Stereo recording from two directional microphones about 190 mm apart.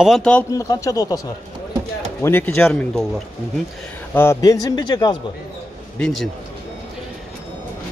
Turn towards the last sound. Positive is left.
turn(degrees=0)  # may be behind; listen again after turning